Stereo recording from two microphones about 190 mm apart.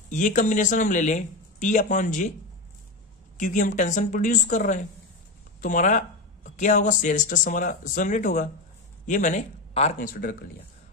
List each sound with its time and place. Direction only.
0.1 s speech: 40° left (ahead or behind)
3.3 s speech: 40° left (ahead or behind)